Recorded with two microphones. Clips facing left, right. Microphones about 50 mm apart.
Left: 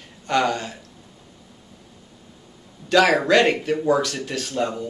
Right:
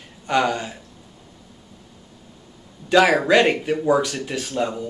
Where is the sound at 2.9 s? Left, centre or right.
Centre.